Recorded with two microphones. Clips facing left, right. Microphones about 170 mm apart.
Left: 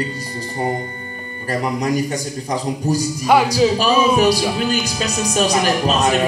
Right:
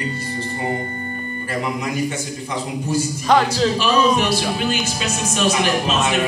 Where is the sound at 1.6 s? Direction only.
40° left (ahead or behind).